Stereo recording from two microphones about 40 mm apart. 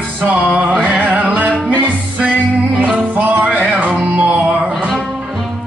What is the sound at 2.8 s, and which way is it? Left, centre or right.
Music, right.